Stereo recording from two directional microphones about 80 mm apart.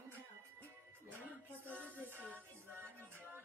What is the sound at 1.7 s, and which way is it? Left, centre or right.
Music, left.